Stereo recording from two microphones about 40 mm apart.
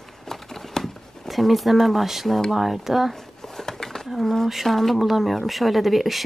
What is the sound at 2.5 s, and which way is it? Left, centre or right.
Speech, centre.